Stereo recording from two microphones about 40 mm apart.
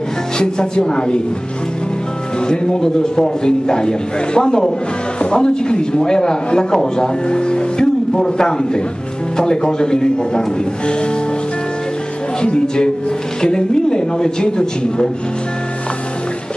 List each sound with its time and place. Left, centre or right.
0.4 s a man's voice: left
2.4 s a man's voice: centre
12.4 s a man's voice: left